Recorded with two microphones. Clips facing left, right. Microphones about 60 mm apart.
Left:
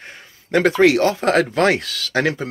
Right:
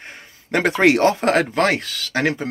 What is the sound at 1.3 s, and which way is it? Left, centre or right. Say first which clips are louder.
Speech: left 1 dB; centre.